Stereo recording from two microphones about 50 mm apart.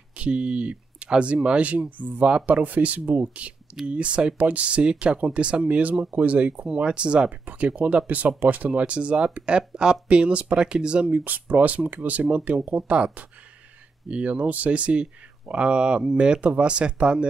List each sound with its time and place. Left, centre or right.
0.1 s speech: right